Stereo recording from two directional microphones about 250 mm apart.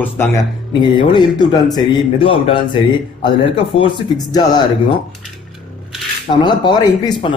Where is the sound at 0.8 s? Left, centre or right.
Centre.